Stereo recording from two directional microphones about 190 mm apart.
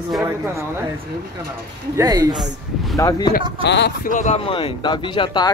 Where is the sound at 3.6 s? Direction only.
65° left (ahead or behind).